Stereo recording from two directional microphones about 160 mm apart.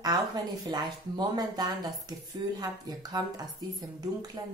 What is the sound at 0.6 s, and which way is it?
Speech, 25° right (ahead or behind).